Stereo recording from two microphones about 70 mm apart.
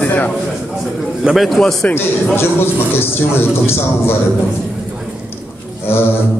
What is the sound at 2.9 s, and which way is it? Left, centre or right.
A man's voice, left.